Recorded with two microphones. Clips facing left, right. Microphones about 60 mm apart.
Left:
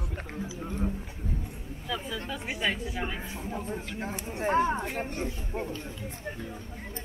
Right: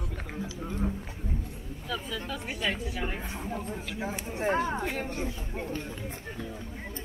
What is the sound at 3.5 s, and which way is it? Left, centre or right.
Speech, centre.